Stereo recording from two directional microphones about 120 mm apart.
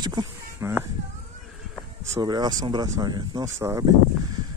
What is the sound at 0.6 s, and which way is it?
Speech, 20° right (ahead or behind).